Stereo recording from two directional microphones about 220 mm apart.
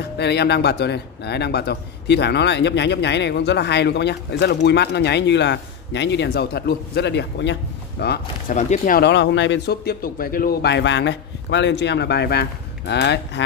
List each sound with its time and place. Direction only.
0.2 s a man's voice: 50° left (ahead or behind)
8.5 s a man's voice: 35° left (ahead or behind); by 13.4 s 50° left (ahead or behind)